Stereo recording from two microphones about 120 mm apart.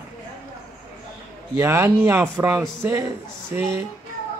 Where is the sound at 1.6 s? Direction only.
20° right (ahead or behind).